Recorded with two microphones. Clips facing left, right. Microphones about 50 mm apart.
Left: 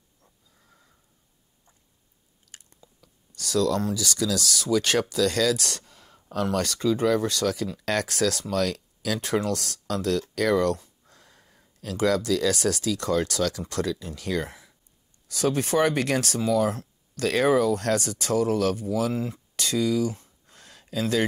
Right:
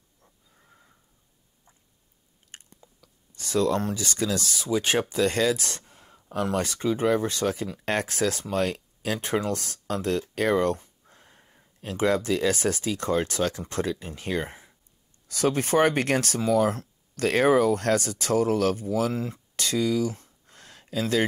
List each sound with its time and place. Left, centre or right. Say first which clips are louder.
0.2 s wheeze: right 2 dB; right
2.5 s chewing: right 3 dB; right
3.3 s speech: even; right
5.8 s a sound: left 1 dB; right
6.3 s speech: left 1 dB; right
10.3 s a sound: even; right
11.8 s speech: even; right